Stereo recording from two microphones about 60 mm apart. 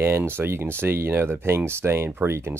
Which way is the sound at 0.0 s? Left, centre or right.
Right.